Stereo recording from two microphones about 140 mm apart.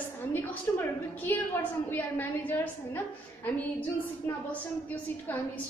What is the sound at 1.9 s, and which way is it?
A woman's voice, 15° left (ahead or behind).